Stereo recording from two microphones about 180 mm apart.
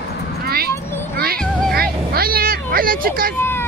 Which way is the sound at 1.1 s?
60° right (ahead or behind).